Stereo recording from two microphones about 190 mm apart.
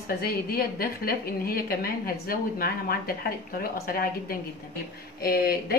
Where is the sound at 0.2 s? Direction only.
50° left (ahead or behind).